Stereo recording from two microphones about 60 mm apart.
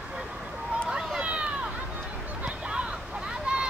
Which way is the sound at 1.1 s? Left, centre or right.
Centre.